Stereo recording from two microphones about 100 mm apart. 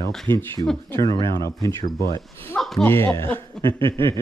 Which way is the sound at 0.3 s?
50° right (ahead or behind).